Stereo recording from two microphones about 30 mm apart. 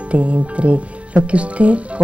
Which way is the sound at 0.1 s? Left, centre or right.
Right.